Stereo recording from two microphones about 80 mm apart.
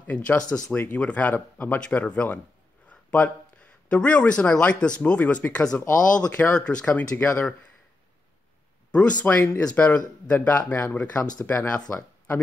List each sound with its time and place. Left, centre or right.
0.0 s speech: centre
6.6 s speech: centre
8.9 s speech: centre